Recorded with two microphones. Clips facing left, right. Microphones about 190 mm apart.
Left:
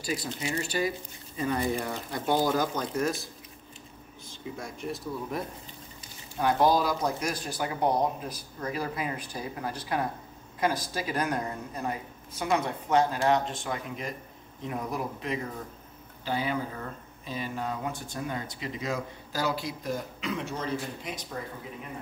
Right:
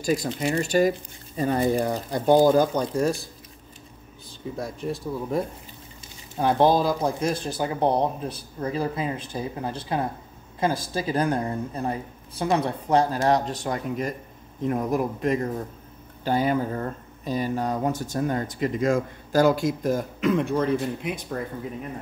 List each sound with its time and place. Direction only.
0.0 s a woman's voice: 45° right (ahead or behind); by 3.2 s 30° right (ahead or behind)
4.3 s speech: 35° right (ahead or behind)
6.3 s a woman's voice: 30° right (ahead or behind); by 21.4 s 60° right (ahead or behind)